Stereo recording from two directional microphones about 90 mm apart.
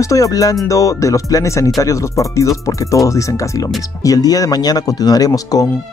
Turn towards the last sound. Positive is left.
turn(degrees=45)  # may be behind; listen again after turning